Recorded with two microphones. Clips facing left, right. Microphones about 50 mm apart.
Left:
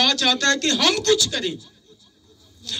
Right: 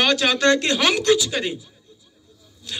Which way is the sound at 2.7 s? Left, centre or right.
Centre.